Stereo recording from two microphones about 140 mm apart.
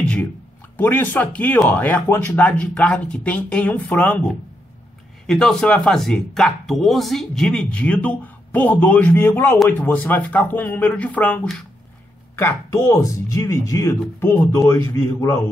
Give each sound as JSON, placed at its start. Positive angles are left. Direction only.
{"t": 0.7, "sound": "speech", "side_deg": 15}